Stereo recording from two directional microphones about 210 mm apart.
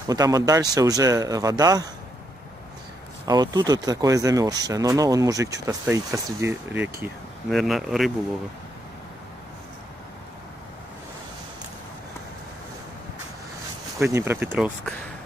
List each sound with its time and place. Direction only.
0.1 s speech: 15° right (ahead or behind)
3.3 s speech: 20° right (ahead or behind); by 8.1 s centre (ahead or behind)
13.9 s speech: 15° right (ahead or behind)